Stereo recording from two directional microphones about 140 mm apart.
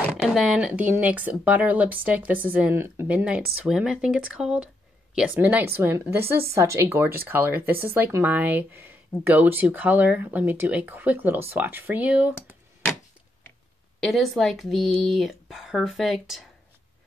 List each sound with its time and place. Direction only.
0.1 s a woman's voice: 5° right (ahead or behind)
13.9 s a woman's voice: centre (ahead or behind)